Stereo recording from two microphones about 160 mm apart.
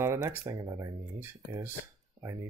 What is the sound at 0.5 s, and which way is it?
Speech, 20° right (ahead or behind).